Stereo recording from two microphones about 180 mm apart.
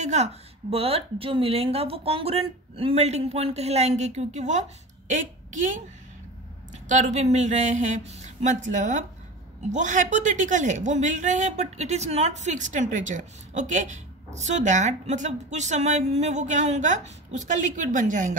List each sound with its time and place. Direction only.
0.0 s a woman's voice: 40° right (ahead or behind)